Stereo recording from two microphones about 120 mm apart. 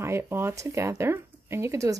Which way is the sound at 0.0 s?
20° right (ahead or behind).